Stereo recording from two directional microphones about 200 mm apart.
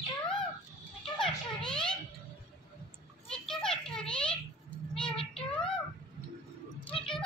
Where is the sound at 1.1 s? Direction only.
5° left (ahead or behind).